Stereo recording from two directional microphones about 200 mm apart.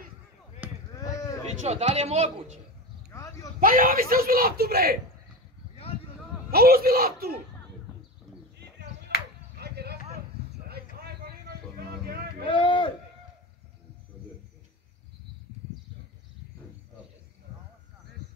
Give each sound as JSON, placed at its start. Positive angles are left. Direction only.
{"t": 0.6, "sound": "chop", "side_deg": -10}
{"t": 1.6, "sound": "a man's voice", "side_deg": -35}
{"t": 6.5, "sound": "speech", "side_deg": -50}
{"t": 9.1, "sound": "a sound", "side_deg": -50}
{"t": 10.7, "sound": "vehicle", "side_deg": -50}
{"t": 12.4, "sound": "a sound", "side_deg": 25}